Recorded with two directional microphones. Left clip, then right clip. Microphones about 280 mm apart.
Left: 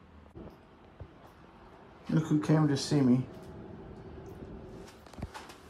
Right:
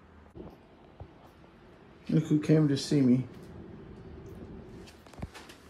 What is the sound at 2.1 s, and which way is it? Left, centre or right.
Speech, left.